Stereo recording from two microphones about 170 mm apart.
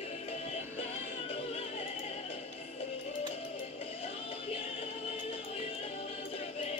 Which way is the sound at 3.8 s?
35° left (ahead or behind).